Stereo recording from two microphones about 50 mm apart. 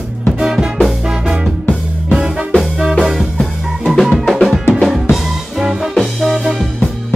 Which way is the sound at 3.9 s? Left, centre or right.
Centre.